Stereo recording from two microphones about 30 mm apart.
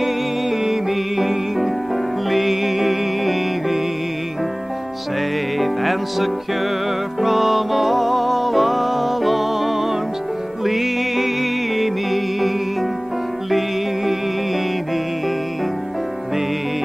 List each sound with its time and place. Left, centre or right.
0.0 s music: centre
5.6 s music: centre